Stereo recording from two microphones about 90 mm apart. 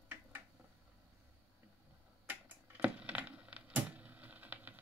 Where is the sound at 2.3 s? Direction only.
20° right (ahead or behind).